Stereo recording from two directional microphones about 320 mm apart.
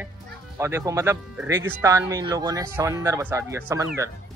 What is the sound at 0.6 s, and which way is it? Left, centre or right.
Speech, centre.